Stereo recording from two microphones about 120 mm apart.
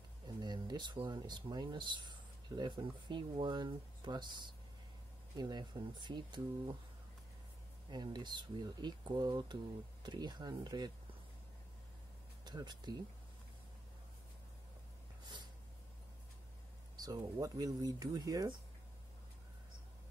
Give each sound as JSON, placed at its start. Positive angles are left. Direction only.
{"t": 0.4, "sound": "speech", "side_deg": -35}
{"t": 7.9, "sound": "speech", "side_deg": -35}
{"t": 12.4, "sound": "speech", "side_deg": -35}
{"t": 16.9, "sound": "speech", "side_deg": -30}